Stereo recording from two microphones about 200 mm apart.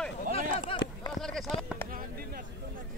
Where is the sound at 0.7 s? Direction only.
25° left (ahead or behind).